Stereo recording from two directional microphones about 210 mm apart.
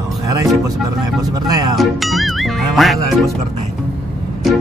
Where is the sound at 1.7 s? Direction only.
Centre (ahead or behind).